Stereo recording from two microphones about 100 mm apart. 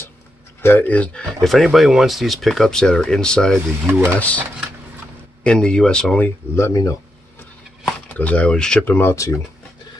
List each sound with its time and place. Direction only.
0.6 s speech: 20° left (ahead or behind)
1.4 s speech: centre (ahead or behind)
3.5 s speech: 20° right (ahead or behind)
4.2 s speech: 15° left (ahead or behind)
6.5 s speech: 30° left (ahead or behind)
8.1 s speech: 15° left (ahead or behind)
8.8 s speech: 20° left (ahead or behind)
9.1 s speech: 30° left (ahead or behind)